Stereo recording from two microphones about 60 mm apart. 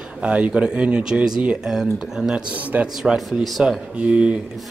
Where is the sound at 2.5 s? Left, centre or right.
Right.